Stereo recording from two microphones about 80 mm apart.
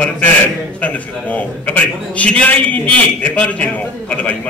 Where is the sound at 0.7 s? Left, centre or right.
Centre.